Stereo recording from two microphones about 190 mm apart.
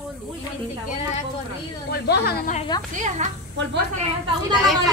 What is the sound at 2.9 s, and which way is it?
Speech, 40° right (ahead or behind).